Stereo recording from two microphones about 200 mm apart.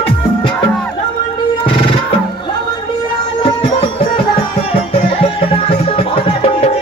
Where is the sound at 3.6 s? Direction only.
25° left (ahead or behind).